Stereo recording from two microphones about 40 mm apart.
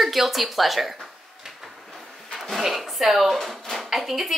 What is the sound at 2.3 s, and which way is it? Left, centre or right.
Dishes, centre.